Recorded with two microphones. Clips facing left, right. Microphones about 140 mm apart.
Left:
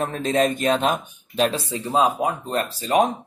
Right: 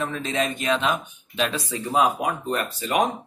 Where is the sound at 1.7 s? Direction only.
25° left (ahead or behind).